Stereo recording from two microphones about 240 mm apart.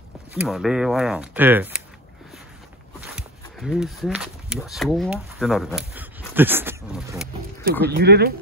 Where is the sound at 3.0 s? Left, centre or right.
Centre.